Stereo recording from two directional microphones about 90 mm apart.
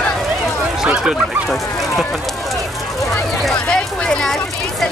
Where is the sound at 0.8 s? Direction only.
10° right (ahead or behind).